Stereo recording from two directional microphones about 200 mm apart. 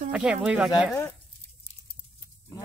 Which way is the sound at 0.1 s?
5° right (ahead or behind).